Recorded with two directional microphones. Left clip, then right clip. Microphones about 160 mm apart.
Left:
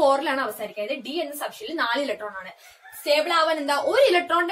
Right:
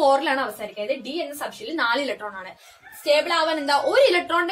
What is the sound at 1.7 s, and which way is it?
Speech, 30° right (ahead or behind).